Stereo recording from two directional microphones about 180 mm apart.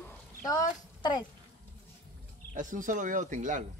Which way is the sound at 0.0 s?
15° left (ahead or behind).